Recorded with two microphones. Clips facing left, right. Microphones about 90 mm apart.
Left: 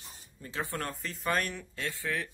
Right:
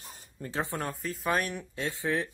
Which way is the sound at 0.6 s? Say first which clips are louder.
Left 1 dB; 20° right (ahead or behind).